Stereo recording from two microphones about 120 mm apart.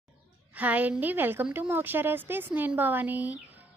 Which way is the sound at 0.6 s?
15° right (ahead or behind).